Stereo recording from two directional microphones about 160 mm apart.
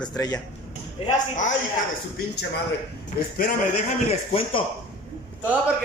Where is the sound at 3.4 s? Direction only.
60° left (ahead or behind).